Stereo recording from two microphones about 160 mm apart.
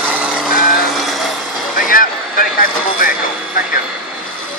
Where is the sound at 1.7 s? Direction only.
60° left (ahead or behind).